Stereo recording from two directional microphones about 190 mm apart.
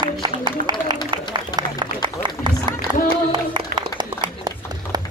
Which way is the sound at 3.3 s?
25° right (ahead or behind).